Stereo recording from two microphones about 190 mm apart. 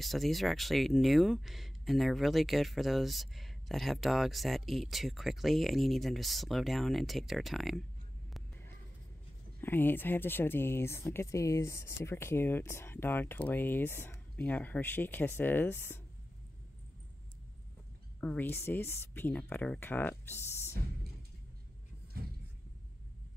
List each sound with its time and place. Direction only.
0.0 s speech: centre (ahead or behind)
9.6 s speech: 10° left (ahead or behind)
18.2 s speech: 10° left (ahead or behind)
22.2 s a sound: 50° right (ahead or behind)